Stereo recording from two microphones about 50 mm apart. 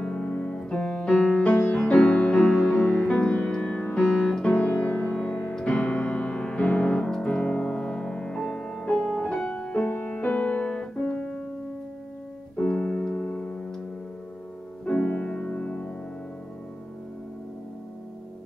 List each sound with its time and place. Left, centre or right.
0.0 s piano: centre
1.2 s music: left
5.9 s piano: left
7.6 s music: centre
9.8 s music: left; by 11.4 s centre
12.5 s keyboard: centre
14.9 s music: centre